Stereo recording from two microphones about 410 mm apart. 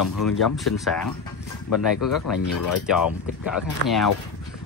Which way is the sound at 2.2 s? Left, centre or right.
Left.